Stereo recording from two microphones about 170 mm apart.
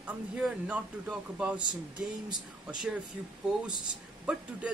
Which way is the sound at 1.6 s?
25° right (ahead or behind).